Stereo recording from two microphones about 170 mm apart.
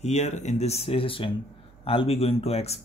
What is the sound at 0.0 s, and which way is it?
Speech, 40° left (ahead or behind).